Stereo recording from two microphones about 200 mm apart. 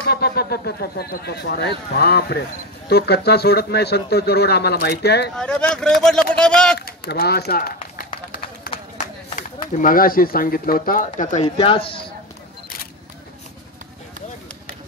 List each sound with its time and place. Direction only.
0.1 s speech: 50° left (ahead or behind)
5.3 s speech: 5° left (ahead or behind)
7.1 s speech: 50° left (ahead or behind)
9.7 s speech: 40° left (ahead or behind)
11.5 s speech: 25° left (ahead or behind)